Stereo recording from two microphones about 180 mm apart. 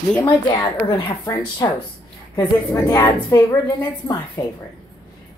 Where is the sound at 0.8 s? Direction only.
25° left (ahead or behind).